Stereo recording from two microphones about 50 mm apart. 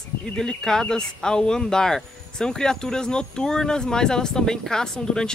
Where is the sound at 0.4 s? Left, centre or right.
Centre.